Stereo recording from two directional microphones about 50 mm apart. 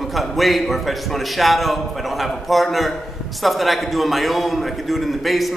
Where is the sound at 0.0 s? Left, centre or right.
Centre.